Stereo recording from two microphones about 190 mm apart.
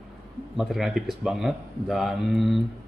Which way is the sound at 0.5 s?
Centre (ahead or behind).